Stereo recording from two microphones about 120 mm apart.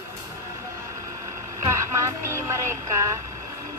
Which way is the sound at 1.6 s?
25° right (ahead or behind).